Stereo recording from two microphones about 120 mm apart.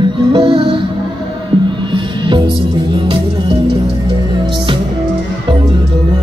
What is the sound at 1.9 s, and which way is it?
Music, 45° right (ahead or behind).